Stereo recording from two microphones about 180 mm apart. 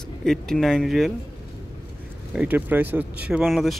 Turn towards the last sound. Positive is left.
turn(degrees=0)  # may be behind; listen again after turning